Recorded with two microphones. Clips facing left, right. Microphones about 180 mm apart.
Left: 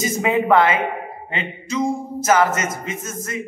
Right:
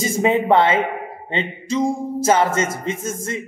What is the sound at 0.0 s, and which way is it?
A woman's voice, 30° right (ahead or behind).